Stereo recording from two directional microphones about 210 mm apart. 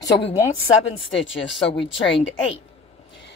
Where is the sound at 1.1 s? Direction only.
60° left (ahead or behind).